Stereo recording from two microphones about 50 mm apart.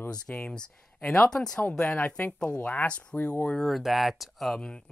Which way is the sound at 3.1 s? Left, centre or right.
Left.